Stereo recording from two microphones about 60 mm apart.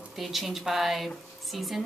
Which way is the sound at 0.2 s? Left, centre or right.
Centre.